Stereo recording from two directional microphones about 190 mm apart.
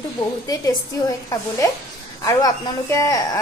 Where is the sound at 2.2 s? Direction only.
20° left (ahead or behind).